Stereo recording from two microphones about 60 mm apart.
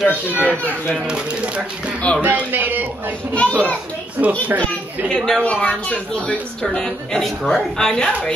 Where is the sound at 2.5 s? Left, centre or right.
Right.